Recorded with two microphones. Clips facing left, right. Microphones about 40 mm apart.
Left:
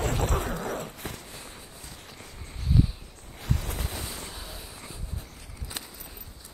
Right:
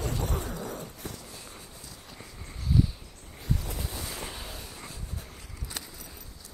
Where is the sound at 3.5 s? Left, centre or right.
Left.